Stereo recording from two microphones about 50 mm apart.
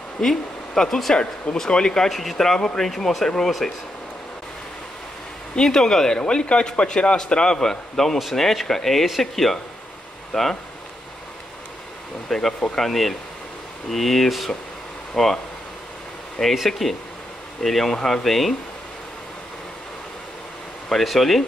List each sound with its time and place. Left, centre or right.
0.2 s speech: centre
1.1 s a man's voice: centre
2.0 s a man's voice: centre
5.6 s a man's voice: centre
12.3 s a man's voice: centre
16.5 s speech: centre
20.9 s speech: centre